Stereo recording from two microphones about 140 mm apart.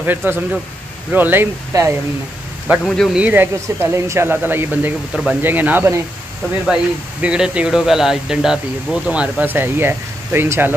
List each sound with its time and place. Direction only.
0.0 s speech: 15° right (ahead or behind)
2.8 s speech: 5° left (ahead or behind)
3.2 s speech: 10° right (ahead or behind)